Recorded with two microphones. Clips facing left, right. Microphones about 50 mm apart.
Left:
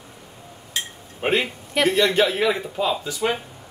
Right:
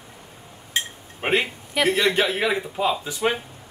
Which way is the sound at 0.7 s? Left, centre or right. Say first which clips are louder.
Right 3 dB; right.